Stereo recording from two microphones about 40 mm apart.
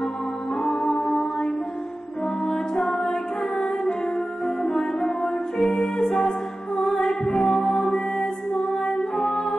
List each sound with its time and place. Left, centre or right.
0.6 s music: centre